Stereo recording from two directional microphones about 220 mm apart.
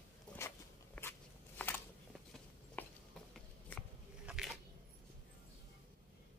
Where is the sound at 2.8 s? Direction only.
5° left (ahead or behind).